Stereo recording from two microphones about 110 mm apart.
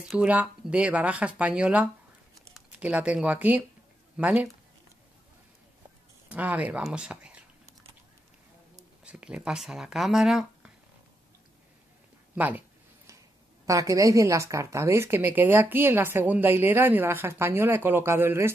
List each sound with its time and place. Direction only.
0.1 s speech: 10° right (ahead or behind)
6.2 s speech: 15° right (ahead or behind)
9.0 s speech: 10° right (ahead or behind)
12.4 s a sound: 15° right (ahead or behind)
13.7 s a woman's voice: 30° right (ahead or behind)